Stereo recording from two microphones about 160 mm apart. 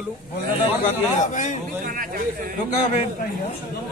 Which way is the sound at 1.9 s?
60° right (ahead or behind).